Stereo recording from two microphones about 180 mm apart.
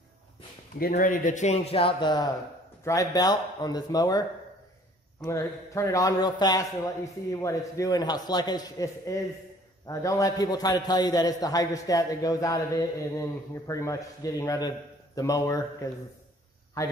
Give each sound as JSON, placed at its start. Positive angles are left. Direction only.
{"t": 0.7, "sound": "a man's voice", "side_deg": 55}
{"t": 5.2, "sound": "a man's voice", "side_deg": 15}